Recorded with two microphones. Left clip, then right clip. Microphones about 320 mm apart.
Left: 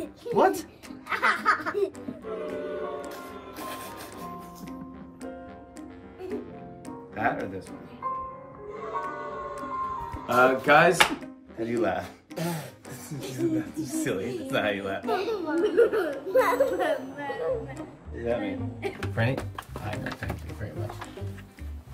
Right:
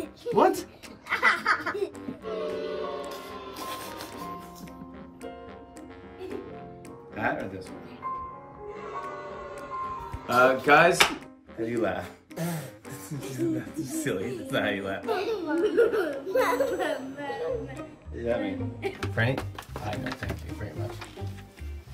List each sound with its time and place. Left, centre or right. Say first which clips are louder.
0.0 s a sound: even; centre
7.2 s speech: left 2 dB; centre
9.6 s music: left 2 dB; centre
11.5 s speech: left 1 dB; centre